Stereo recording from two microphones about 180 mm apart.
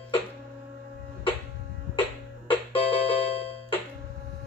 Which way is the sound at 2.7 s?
30° left (ahead or behind).